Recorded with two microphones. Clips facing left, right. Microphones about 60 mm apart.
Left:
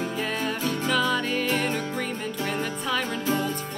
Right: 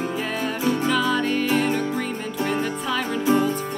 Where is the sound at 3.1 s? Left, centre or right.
Centre.